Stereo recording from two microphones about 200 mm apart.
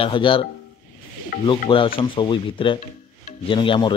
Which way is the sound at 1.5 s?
25° left (ahead or behind).